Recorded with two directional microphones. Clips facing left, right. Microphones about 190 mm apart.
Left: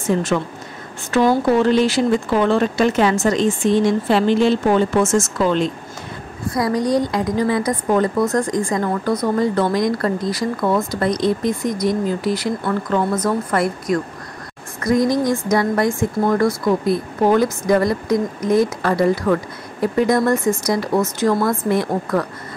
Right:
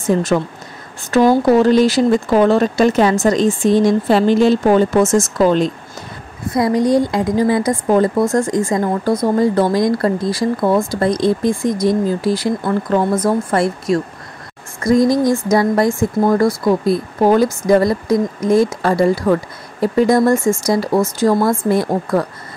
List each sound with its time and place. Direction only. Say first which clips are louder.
1.1 s speech: right 4 dB; 40° right (ahead or behind)
6.5 s a woman's voice: right 4 dB; 25° right (ahead or behind)